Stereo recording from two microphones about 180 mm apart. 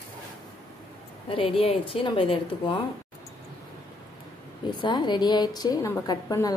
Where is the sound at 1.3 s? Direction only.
30° left (ahead or behind).